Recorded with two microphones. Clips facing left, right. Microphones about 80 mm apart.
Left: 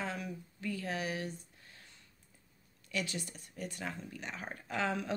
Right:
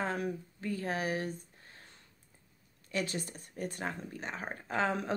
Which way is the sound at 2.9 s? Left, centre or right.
Right.